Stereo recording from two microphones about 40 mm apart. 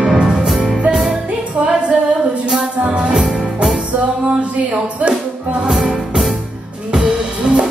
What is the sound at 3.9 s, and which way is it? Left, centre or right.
Music, right.